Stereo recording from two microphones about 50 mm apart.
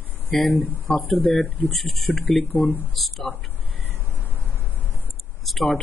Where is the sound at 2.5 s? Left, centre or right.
Left.